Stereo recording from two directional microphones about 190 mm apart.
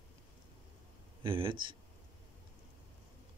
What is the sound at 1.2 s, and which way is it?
Speech, 25° right (ahead or behind).